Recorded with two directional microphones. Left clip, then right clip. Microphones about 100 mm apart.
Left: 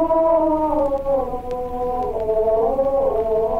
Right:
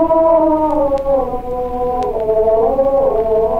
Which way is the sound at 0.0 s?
30° right (ahead or behind).